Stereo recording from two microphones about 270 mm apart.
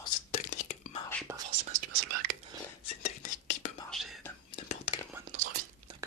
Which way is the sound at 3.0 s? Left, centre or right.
Left.